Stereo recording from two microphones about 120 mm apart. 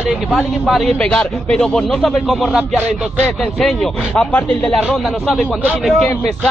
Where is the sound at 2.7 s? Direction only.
10° left (ahead or behind).